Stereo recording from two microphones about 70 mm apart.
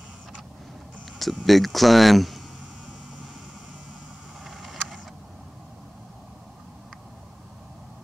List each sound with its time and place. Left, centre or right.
1.4 s speech: centre
4.5 s vehicle: centre